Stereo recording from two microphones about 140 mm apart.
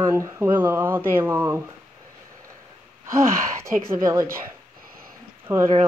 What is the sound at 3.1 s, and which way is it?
Speech, 20° right (ahead or behind).